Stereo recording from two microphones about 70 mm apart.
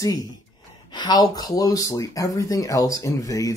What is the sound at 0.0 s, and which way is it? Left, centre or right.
Speech, left.